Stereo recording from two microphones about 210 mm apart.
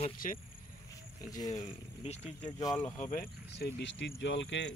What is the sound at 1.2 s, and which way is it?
Speech, 15° left (ahead or behind).